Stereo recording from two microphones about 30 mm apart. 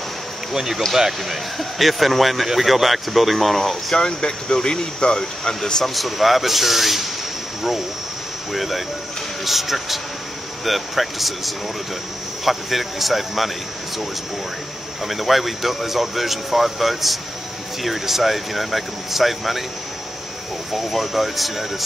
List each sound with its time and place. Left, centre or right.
0.6 s speech: centre
1.6 s speech: centre
3.9 s speech: left
5.9 s speech: centre
8.5 s speech: centre
15.0 s speech: centre
20.7 s speech: centre